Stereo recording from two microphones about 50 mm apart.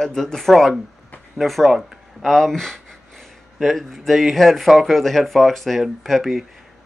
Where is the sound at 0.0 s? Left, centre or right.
Centre.